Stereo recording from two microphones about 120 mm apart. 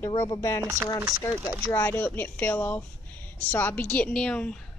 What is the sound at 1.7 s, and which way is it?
A woman's voice, 20° left (ahead or behind).